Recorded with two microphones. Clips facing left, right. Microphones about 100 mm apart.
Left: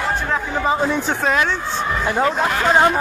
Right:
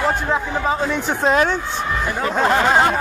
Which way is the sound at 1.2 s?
40° right (ahead or behind).